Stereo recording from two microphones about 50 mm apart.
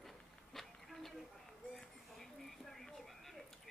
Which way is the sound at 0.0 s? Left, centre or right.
Centre.